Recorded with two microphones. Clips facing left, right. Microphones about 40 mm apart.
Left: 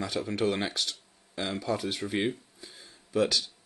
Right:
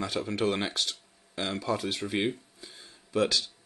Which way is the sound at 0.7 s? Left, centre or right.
Right.